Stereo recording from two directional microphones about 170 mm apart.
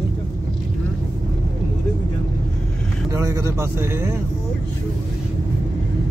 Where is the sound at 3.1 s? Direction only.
20° right (ahead or behind).